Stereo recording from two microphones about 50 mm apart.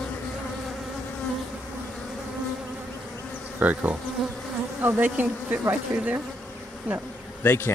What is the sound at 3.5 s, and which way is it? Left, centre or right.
Bee, right.